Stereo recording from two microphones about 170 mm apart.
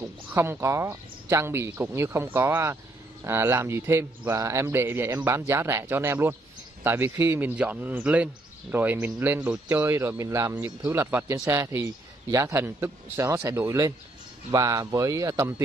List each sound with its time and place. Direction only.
0.0 s speech: 15° right (ahead or behind)